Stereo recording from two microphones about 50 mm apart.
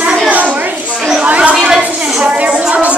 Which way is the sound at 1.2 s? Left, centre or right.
Right.